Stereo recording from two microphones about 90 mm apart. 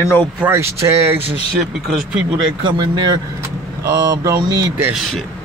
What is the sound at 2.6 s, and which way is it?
Speech, 60° right (ahead or behind).